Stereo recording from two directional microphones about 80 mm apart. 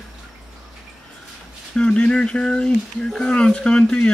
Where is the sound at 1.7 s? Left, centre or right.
Centre.